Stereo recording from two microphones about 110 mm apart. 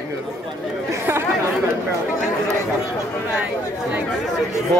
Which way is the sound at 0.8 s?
20° right (ahead or behind).